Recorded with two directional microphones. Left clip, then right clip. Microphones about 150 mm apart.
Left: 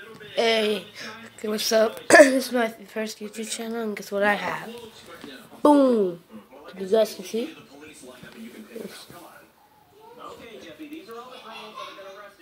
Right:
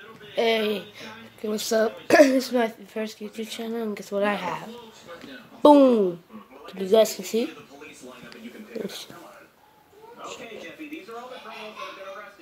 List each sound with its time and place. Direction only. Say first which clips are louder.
0.4 s speech: left 1 dB; 20° right (ahead or behind); by 6.0 s 35° right (ahead or behind)
6.7 s speech: right 2 dB; 55° right (ahead or behind)